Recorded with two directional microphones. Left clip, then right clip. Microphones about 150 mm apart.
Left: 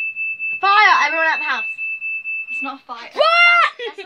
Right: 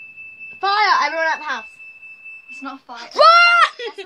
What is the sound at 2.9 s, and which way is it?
Speech, 15° right (ahead or behind).